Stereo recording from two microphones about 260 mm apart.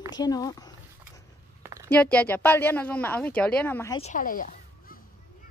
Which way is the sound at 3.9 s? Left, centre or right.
Left.